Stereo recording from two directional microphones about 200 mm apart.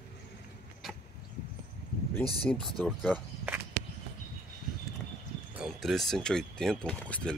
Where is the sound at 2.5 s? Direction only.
Centre (ahead or behind).